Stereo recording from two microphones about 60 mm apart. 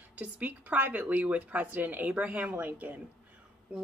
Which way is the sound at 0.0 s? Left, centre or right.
Right.